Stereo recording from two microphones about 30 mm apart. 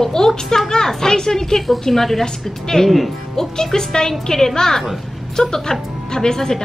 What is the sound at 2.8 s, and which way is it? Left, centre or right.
Speech, centre.